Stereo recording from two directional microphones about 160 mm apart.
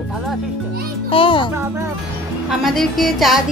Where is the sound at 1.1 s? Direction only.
30° left (ahead or behind).